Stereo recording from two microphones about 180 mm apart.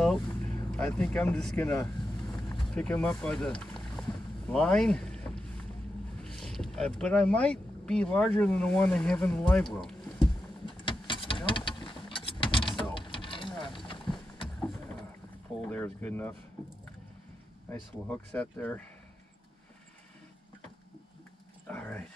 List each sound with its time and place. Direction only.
0.0 s vehicle: 5° left (ahead or behind)
0.7 s speech: 5° left (ahead or behind)
10.6 s a sound: 25° left (ahead or behind)
15.7 s speech: 10° left (ahead or behind)
17.6 s speech: 10° left (ahead or behind)
21.6 s dog: 10° left (ahead or behind)